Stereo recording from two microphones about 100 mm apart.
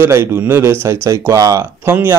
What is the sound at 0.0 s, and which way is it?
Speech, 25° right (ahead or behind).